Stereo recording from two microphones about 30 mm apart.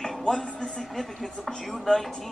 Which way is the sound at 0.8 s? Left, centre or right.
Centre.